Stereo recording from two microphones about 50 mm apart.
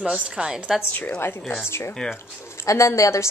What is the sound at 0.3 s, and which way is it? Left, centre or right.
Speech, centre.